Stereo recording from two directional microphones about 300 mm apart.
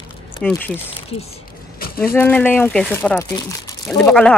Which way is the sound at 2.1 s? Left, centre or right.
Centre.